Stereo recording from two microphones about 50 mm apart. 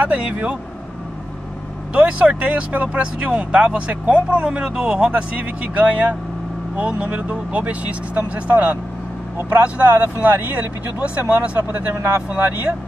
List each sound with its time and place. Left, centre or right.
0.0 s speech: right
2.0 s speech: right
4.5 s speech: right